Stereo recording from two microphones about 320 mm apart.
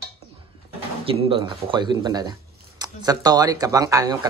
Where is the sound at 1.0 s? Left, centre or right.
Centre.